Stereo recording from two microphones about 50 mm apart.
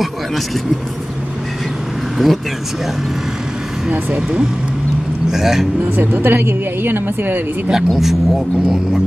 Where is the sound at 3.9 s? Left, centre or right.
Centre.